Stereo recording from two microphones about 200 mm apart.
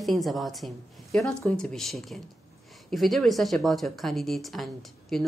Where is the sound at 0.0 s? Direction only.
Centre (ahead or behind).